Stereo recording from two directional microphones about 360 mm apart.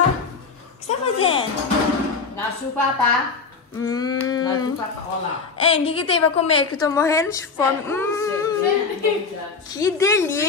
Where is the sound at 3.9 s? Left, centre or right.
Centre.